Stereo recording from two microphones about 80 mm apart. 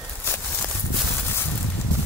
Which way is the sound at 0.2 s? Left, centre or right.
Left.